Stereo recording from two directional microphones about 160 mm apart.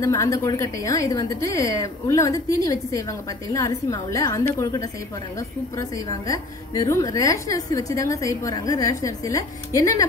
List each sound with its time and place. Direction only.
0.0 s a woman's voice: 20° left (ahead or behind)